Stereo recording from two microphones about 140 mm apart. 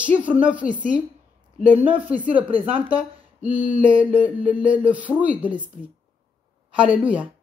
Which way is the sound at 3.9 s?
10° right (ahead or behind).